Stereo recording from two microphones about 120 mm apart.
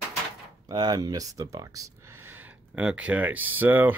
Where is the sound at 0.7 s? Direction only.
35° right (ahead or behind); by 3.9 s 15° right (ahead or behind).